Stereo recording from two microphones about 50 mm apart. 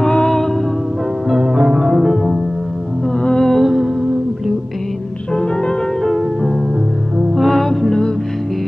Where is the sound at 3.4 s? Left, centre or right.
Centre.